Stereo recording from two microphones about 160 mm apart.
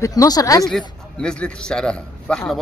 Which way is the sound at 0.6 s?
5° left (ahead or behind).